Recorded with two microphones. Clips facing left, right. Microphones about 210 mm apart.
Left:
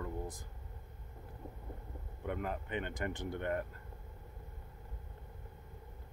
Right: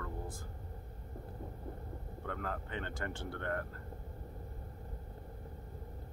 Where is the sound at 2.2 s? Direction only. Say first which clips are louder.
Left 3 dB; 15° left (ahead or behind).